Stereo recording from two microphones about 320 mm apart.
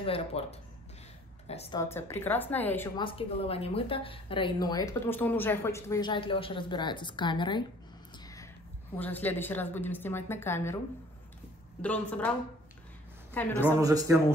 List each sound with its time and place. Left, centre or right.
0.0 s a woman's voice: centre
8.9 s a woman's voice: centre
11.8 s a woman's voice: centre
13.3 s a woman's voice: centre
13.7 s a man's voice: centre